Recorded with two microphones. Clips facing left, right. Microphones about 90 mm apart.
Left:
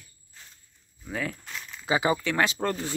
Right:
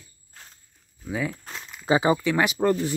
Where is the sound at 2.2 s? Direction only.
15° right (ahead or behind).